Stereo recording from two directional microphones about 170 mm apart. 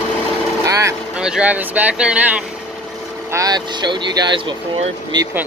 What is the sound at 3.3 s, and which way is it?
Speech, 20° right (ahead or behind).